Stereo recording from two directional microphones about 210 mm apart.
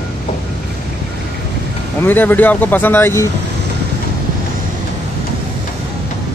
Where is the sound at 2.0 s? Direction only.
10° left (ahead or behind).